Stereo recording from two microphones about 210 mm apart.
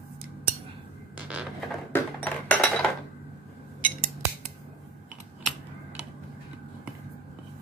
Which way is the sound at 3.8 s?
40° right (ahead or behind).